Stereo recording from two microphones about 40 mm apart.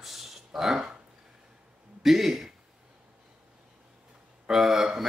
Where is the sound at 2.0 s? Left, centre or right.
Centre.